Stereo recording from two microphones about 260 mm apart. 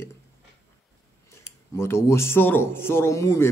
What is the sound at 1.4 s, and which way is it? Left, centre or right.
Speech, centre.